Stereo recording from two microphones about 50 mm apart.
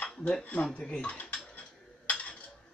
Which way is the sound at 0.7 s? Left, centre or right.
Left.